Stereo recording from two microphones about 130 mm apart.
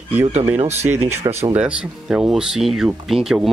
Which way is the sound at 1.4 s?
10° right (ahead or behind).